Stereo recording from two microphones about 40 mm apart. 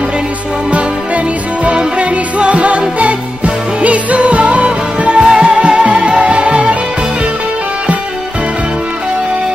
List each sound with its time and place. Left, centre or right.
0.7 s music: right